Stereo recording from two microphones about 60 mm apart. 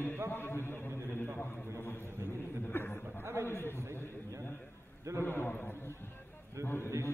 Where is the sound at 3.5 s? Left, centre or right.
Left.